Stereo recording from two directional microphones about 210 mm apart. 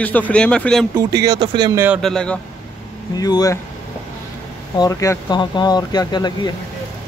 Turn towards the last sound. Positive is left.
turn(degrees=20)  # may be behind; listen again after turning